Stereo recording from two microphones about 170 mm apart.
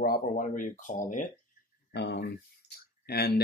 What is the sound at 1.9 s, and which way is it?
Speech, 85° left.